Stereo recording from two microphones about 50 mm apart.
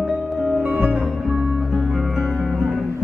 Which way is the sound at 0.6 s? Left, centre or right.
Right.